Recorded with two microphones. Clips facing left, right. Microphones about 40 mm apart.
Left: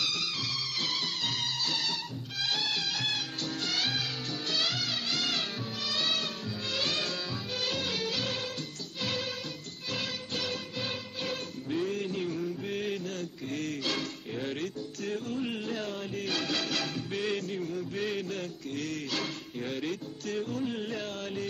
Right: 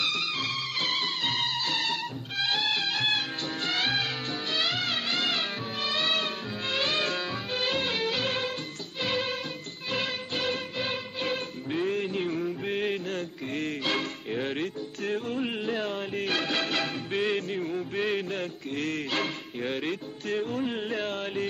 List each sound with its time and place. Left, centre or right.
0.0 s music: right